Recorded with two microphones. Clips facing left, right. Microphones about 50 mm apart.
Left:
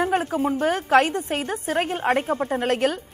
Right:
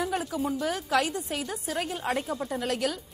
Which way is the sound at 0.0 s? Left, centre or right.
Left.